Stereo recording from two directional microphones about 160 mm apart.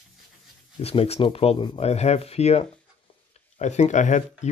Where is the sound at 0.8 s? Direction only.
40° left (ahead or behind).